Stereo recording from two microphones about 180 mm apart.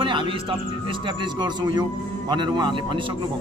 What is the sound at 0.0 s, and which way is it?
A man's voice, 25° right (ahead or behind).